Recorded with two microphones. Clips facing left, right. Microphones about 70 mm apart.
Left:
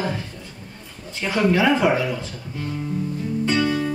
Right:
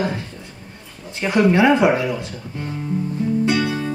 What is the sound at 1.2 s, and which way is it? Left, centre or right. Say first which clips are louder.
Speech: right 4 dB; centre.